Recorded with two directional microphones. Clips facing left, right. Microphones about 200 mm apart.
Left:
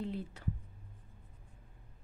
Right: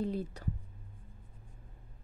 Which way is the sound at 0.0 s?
40° right (ahead or behind).